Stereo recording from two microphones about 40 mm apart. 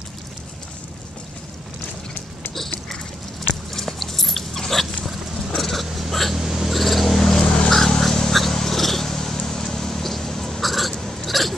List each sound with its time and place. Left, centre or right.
3.7 s dog: centre
5.6 s vehicle: centre
6.3 s a sound: centre
6.8 s vehicle: centre
7.4 s a sound: left
8.0 s vehicle: centre